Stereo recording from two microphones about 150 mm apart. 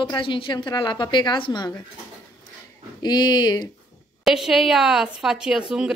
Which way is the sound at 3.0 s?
30° left (ahead or behind).